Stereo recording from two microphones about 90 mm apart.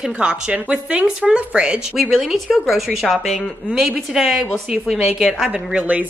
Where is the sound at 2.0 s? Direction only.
5° left (ahead or behind).